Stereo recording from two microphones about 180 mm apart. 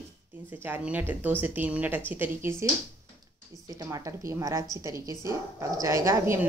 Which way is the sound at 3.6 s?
20° right (ahead or behind).